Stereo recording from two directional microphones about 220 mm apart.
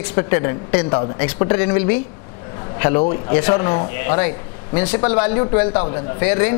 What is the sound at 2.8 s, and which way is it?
A man's voice, 25° left (ahead or behind).